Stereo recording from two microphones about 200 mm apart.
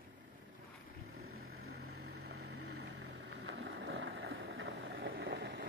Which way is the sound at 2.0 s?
55° right (ahead or behind).